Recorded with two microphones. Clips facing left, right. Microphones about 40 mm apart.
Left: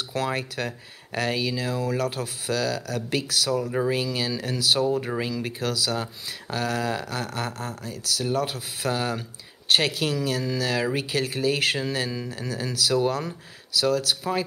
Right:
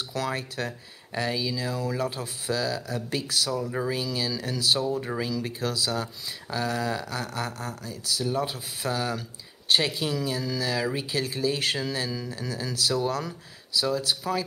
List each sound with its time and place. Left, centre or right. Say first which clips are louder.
0.1 s speech: left 3 dB; left
1.1 s speech: left 2 dB; left
3.6 s speech: left 4 dB; centre
3.9 s speech: left 3 dB; left
4.6 s speech: left 2 dB; left
4.8 s speech: left 3 dB; left
8.9 s speech: left 1 dB; left
9.7 s speech: left 2 dB; left
13.7 s speech: left 3 dB; left